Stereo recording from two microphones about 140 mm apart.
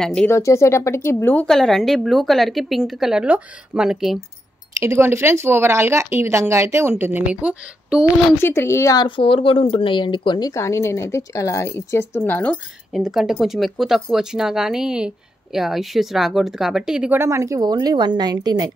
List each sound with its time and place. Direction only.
0.0 s speech: 5° left (ahead or behind)
0.3 s speech: 20° left (ahead or behind); by 4.2 s 5° right (ahead or behind)
4.7 s speech: 20° right (ahead or behind)
8.4 s speech: 15° left (ahead or behind)
9.0 s speech: 40° left (ahead or behind)
10.5 s speech: 20° left (ahead or behind)
12.9 s speech: centre (ahead or behind)
17.2 s a woman's voice: 20° right (ahead or behind)